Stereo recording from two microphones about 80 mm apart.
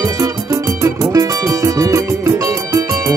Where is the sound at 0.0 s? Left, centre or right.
Right.